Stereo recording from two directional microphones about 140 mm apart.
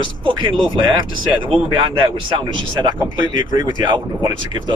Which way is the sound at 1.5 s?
35° right (ahead or behind).